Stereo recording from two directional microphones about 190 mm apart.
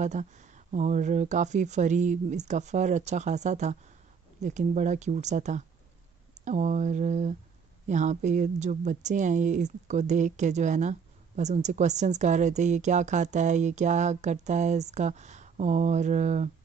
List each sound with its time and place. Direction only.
0.0 s a woman's voice: 40° right (ahead or behind)